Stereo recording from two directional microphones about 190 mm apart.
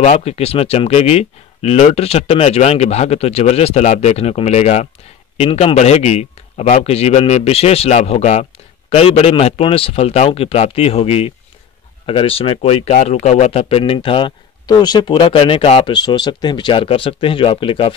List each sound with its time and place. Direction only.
0.0 s speech: 35° left (ahead or behind)